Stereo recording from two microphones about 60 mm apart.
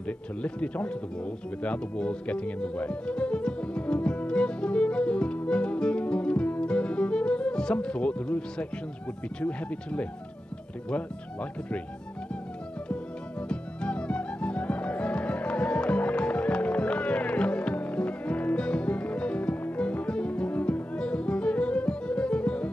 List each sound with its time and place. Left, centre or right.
0.0 s speech: left
1.6 s music: centre
9.4 s speech: centre
13.5 s music: centre